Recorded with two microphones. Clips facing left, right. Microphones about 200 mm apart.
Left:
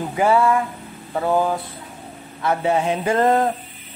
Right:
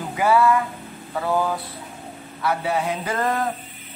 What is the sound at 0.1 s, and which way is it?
Speech, 25° left (ahead or behind).